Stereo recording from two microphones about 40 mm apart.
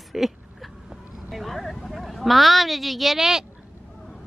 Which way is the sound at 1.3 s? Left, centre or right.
Centre.